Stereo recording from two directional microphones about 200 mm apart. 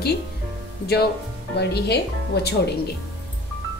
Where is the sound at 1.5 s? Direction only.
55° left (ahead or behind).